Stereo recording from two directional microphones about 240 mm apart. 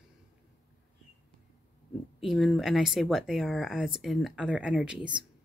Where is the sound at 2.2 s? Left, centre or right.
Centre.